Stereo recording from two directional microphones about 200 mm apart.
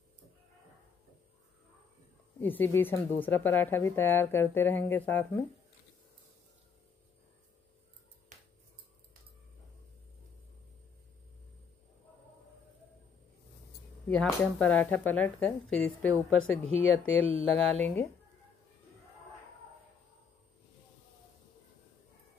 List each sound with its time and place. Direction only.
2.4 s speech: 10° left (ahead or behind)
14.0 s speech: 5° left (ahead or behind)
16.6 s speech: 30° right (ahead or behind)
17.2 s speech: 10° left (ahead or behind)